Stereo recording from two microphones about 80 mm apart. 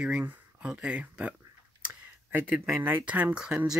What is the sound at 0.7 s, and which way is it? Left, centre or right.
Speech, centre.